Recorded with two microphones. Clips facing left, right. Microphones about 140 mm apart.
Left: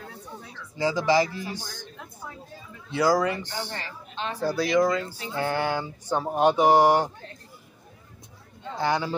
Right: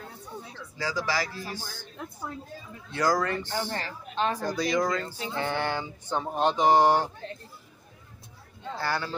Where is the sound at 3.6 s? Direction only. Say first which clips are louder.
Right 3 dB; 45° right (ahead or behind).